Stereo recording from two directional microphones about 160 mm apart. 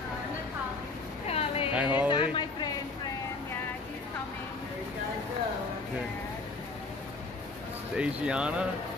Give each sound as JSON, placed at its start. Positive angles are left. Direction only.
{"t": 1.2, "sound": "a sound", "side_deg": 40}
{"t": 1.7, "sound": "speech", "side_deg": -10}
{"t": 2.0, "sound": "speech", "side_deg": 30}
{"t": 8.0, "sound": "speech", "side_deg": -5}